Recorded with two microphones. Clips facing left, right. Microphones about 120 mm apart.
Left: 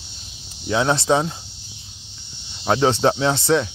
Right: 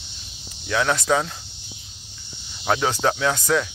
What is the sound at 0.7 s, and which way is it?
Speech, 25° left (ahead or behind).